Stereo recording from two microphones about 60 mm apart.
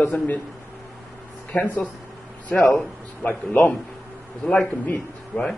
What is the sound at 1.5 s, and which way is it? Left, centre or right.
Speech, left.